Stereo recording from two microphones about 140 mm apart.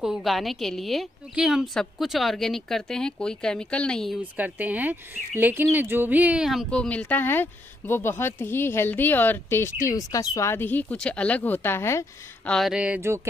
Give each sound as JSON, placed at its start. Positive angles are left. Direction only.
{"t": 0.0, "sound": "a woman's voice", "side_deg": 0}
{"t": 4.4, "sound": "speech", "side_deg": -10}
{"t": 6.7, "sound": "speech", "side_deg": 10}
{"t": 12.4, "sound": "speech", "side_deg": 0}